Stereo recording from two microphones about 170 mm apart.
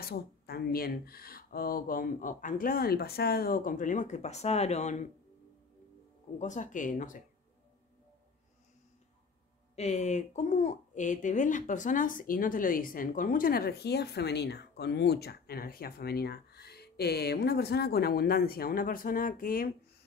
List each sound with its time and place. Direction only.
0.0 s speech: 60° left (ahead or behind); by 5.0 s 40° left (ahead or behind)
6.3 s speech: 45° left (ahead or behind)
9.8 s speech: 45° left (ahead or behind)